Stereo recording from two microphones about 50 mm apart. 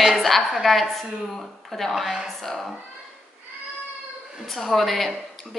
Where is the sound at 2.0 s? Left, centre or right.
Centre.